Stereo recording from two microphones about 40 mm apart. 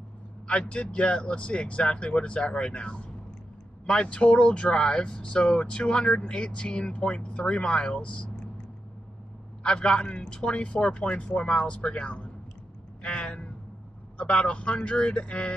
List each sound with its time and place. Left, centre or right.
0.5 s speech: left
9.6 s speech: left